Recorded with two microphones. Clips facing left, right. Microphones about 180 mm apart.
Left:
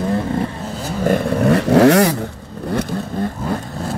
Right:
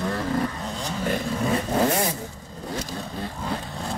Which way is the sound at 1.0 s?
55° left (ahead or behind).